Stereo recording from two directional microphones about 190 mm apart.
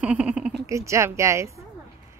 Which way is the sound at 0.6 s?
15° right (ahead or behind).